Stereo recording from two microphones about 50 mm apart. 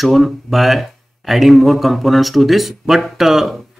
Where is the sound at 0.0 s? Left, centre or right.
Centre.